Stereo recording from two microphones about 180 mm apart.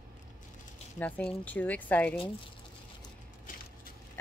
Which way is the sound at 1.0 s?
5° left (ahead or behind).